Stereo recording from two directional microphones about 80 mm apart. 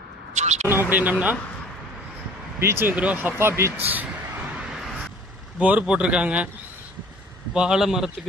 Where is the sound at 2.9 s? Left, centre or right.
Centre.